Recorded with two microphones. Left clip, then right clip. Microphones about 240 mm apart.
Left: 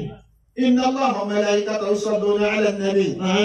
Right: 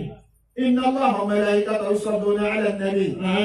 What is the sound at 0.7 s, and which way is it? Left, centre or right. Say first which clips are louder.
A man's voice: left 1 dB; left.